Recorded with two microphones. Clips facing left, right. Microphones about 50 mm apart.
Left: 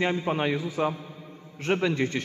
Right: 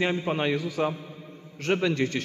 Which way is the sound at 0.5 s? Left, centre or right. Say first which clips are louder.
Right 1 dB; centre.